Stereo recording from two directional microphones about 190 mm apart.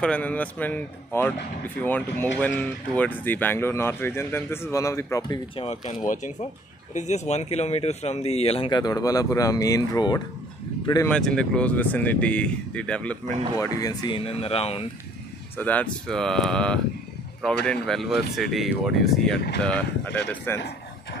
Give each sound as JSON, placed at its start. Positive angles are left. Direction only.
{"t": 0.0, "sound": "speech", "side_deg": 5}
{"t": 5.6, "sound": "speech", "side_deg": 40}
{"t": 11.1, "sound": "speech", "side_deg": 5}
{"t": 13.2, "sound": "speech", "side_deg": -35}
{"t": 13.6, "sound": "speech", "side_deg": 20}
{"t": 15.5, "sound": "speech", "side_deg": 10}